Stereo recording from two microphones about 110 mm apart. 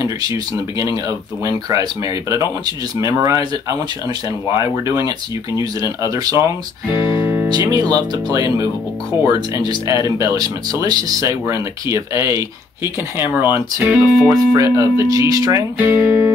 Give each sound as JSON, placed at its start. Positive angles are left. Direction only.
{"t": 0.0, "sound": "speech", "side_deg": -35}
{"t": 4.6, "sound": "speech", "side_deg": -35}
{"t": 7.0, "sound": "music", "side_deg": 50}
{"t": 7.4, "sound": "speech", "side_deg": -35}
{"t": 14.5, "sound": "speech", "side_deg": -30}
{"t": 15.8, "sound": "speech", "side_deg": -15}